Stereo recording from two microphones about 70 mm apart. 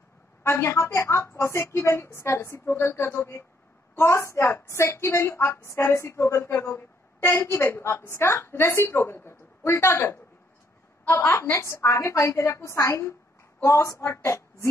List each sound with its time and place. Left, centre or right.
0.4 s a woman's voice: left
11.5 s a woman's voice: left